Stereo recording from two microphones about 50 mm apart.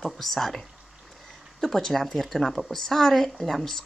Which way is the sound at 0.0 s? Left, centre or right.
Centre.